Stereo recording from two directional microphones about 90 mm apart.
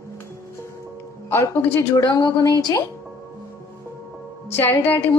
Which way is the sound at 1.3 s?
25° left (ahead or behind).